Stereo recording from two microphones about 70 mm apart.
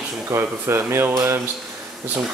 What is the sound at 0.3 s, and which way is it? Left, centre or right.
Speech, right.